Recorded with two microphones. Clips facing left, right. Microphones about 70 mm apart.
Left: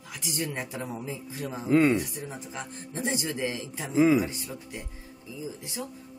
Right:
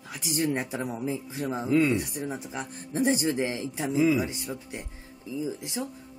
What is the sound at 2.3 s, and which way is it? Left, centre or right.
Speech, centre.